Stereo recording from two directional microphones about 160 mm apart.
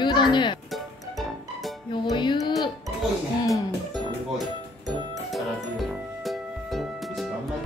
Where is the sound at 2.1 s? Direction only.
30° left (ahead or behind).